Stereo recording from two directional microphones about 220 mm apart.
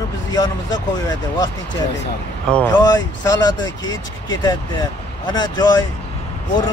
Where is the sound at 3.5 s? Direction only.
60° left (ahead or behind).